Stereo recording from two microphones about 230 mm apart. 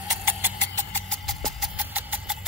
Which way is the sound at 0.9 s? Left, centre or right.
Centre.